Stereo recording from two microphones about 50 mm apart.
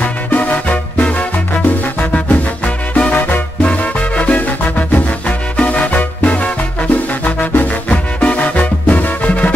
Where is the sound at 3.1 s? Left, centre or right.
Left.